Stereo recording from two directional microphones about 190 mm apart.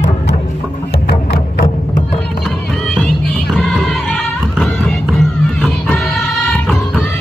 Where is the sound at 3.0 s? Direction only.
Centre (ahead or behind).